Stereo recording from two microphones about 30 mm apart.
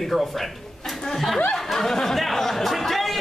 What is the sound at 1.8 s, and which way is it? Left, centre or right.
A woman's voice, centre.